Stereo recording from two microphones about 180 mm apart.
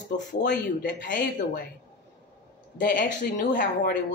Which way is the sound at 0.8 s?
60° left (ahead or behind).